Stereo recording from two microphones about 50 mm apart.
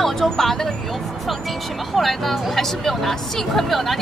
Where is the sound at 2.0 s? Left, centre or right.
Centre.